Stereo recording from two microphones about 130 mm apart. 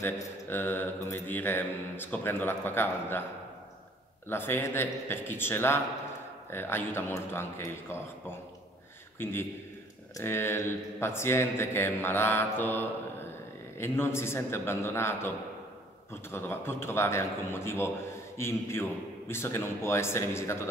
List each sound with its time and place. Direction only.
0.0 s mantra: 15° left (ahead or behind)
4.3 s mantra: 20° left (ahead or behind)
13.7 s a man's voice: 20° left (ahead or behind)